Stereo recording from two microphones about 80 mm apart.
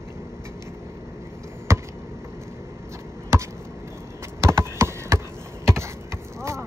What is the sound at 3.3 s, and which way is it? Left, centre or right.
Chop, right.